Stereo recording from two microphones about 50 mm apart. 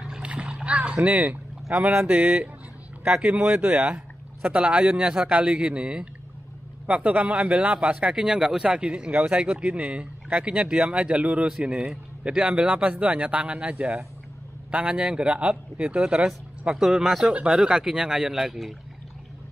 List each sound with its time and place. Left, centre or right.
0.0 s a sound: right
1.7 s speech: centre
2.0 s speech: right
3.1 s speech: centre
3.5 s speech: right
12.6 s speech: right
16.7 s speech: centre
17.5 s speech: centre